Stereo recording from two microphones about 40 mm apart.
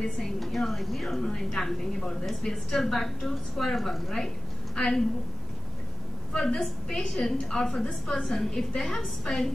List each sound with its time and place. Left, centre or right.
0.0 s a woman's voice: centre
1.2 s a woman's voice: centre
4.7 s a woman's voice: centre
6.3 s a woman's voice: centre